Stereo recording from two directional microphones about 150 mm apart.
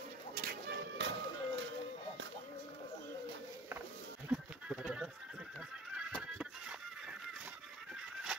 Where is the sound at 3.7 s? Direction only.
15° right (ahead or behind).